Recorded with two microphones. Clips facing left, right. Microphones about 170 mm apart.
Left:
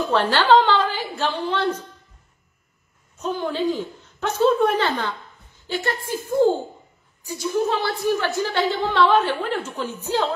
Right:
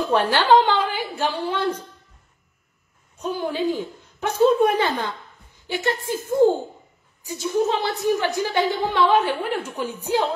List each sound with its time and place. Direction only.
0.1 s a woman's voice: 15° right (ahead or behind)
3.2 s a woman's voice: 10° right (ahead or behind)